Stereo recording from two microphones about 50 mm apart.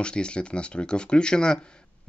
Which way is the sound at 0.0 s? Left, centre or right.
Centre.